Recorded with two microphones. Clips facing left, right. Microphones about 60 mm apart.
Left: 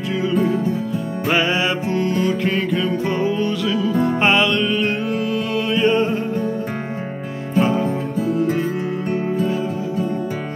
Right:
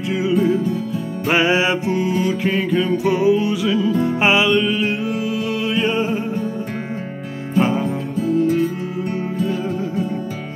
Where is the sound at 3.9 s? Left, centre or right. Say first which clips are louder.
Even; left.